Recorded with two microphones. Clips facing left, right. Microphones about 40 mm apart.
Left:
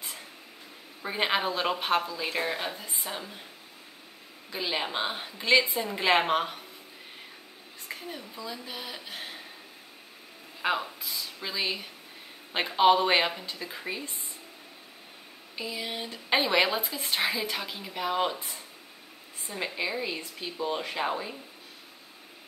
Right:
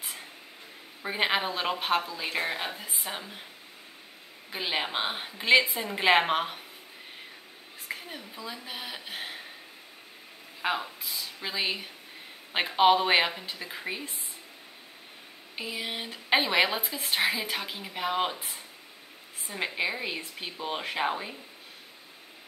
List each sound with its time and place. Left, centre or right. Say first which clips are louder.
1.0 s speech: even; centre
4.5 s a woman's voice: even; centre
7.9 s speech: even; centre
10.6 s speech: left 1 dB; centre
15.5 s speech: even; right
19.6 s a woman's voice: right 1 dB; centre